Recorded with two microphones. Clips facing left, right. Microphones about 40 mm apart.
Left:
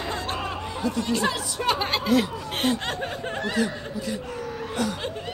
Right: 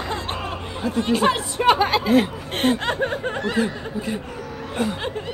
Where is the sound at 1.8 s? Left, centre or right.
Centre.